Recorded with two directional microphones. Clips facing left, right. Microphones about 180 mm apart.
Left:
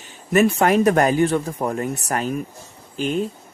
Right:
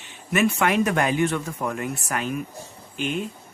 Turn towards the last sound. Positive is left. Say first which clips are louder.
# left 5 dB
turn(degrees=35)  # may be behind; listen again after turning